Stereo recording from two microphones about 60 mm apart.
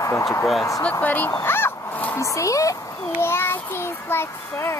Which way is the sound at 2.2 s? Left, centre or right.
Left.